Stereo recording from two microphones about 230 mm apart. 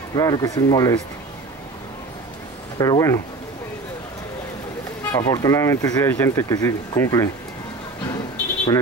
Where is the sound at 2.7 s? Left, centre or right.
Centre.